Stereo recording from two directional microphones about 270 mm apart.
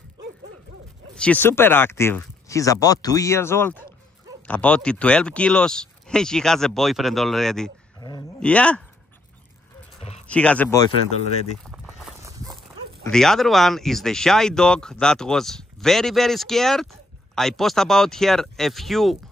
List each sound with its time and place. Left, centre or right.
1.1 s speech: centre
8.0 s a sound: centre
8.4 s speech: centre
9.9 s a sound: left
10.2 s speech: centre
11.6 s vehicle: centre
13.0 s speech: centre